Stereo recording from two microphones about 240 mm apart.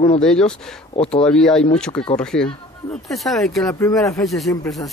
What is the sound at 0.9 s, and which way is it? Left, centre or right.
Speech, left.